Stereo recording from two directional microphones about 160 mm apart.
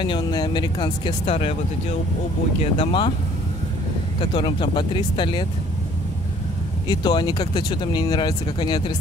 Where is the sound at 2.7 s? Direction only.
30° left (ahead or behind).